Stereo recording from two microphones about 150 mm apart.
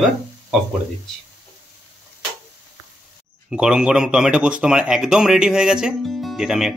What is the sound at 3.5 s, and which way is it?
A man's voice, 5° right (ahead or behind).